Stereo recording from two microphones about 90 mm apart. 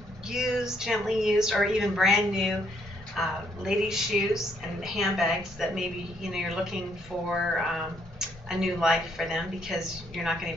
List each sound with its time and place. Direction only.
0.3 s speech: 5° right (ahead or behind)